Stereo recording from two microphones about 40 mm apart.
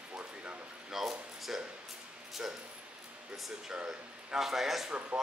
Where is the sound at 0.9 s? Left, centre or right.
Centre.